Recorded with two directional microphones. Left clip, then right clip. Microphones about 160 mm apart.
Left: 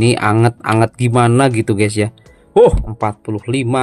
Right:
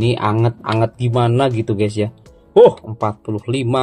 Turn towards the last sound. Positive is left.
turn(degrees=20)  # may be behind; listen again after turning